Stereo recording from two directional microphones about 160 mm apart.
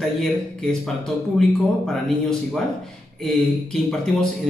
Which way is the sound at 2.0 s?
5° left (ahead or behind).